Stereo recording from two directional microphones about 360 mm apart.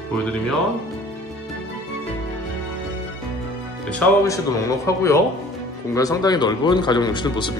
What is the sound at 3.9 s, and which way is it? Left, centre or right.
Speech, centre.